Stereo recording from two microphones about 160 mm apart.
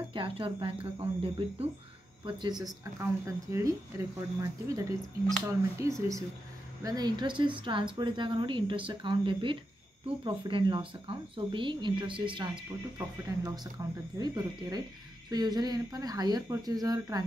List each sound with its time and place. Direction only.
0.1 s a woman's voice: 35° right (ahead or behind)
13.8 s speech: 20° right (ahead or behind)